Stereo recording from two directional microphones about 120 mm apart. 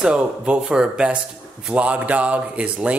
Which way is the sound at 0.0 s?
10° right (ahead or behind).